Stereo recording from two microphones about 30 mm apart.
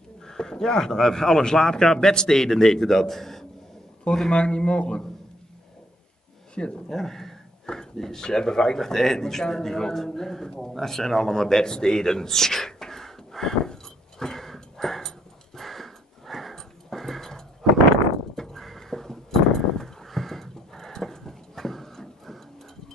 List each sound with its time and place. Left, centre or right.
0.2 s a man's voice: left
4.3 s speech: left
6.5 s speech: left
6.9 s speech: centre
7.6 s a sound: left
8.0 s speech: centre
14.2 s a sound: centre